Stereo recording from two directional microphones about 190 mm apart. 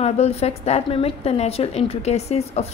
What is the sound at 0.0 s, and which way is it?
A woman's voice, 30° left (ahead or behind).